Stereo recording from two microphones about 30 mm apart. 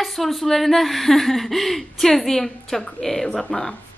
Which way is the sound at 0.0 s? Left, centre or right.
Centre.